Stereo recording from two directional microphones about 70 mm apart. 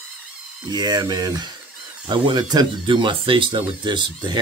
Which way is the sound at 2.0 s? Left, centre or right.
Right.